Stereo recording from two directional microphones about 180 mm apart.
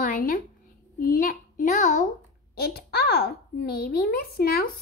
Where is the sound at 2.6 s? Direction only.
60° left (ahead or behind).